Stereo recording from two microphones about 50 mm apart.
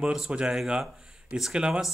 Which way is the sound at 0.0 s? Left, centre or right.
Centre.